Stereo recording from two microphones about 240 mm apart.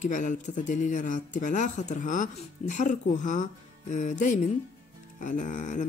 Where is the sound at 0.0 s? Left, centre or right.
Left.